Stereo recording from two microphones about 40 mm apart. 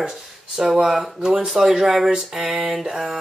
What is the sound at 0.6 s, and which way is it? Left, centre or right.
Speech, centre.